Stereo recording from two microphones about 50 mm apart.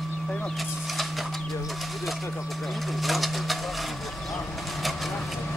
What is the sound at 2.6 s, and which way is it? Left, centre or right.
Pigeon, centre.